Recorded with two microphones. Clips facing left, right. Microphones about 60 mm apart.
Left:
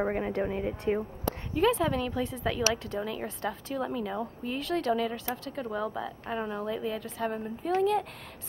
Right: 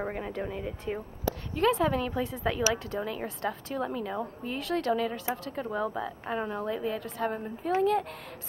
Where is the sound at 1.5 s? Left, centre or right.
Centre.